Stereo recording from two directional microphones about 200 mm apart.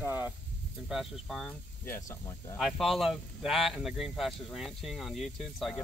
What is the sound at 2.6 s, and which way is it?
Speech, centre (ahead or behind).